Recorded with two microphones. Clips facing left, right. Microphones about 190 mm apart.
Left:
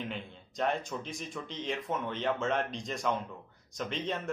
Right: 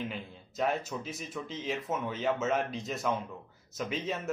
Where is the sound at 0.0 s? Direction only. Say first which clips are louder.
Right 1 dB; 5° right (ahead or behind).